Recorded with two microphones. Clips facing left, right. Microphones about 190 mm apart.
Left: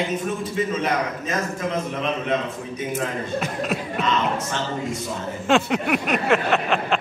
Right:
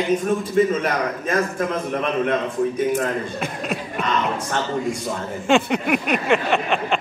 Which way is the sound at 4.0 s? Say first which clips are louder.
Even; 50° right (ahead or behind).